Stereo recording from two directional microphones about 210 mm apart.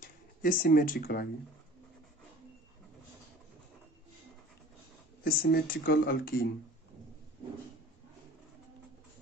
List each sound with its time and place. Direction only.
0.0 s speech: 40° left (ahead or behind)
5.2 s speech: 45° left (ahead or behind)